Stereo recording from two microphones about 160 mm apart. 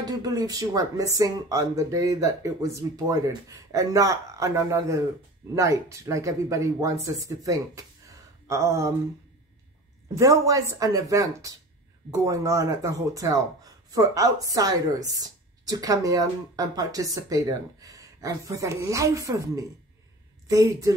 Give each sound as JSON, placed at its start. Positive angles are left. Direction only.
{"t": 0.0, "sound": "speech", "side_deg": -25}
{"t": 10.1, "sound": "speech", "side_deg": -20}